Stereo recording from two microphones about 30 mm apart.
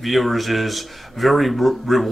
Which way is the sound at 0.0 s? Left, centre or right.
Centre.